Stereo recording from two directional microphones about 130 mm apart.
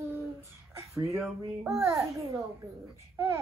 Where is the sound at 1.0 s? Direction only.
20° right (ahead or behind).